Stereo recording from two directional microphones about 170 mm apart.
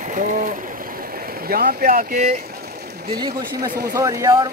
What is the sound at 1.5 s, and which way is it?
Speech, 60° right (ahead or behind).